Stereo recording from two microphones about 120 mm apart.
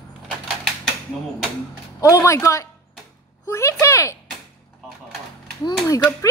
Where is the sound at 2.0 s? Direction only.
25° left (ahead or behind).